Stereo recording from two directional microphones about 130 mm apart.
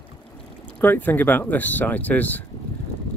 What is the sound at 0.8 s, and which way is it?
Speech, 15° left (ahead or behind).